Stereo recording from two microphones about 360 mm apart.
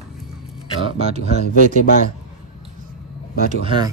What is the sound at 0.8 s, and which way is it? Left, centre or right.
Speech, centre.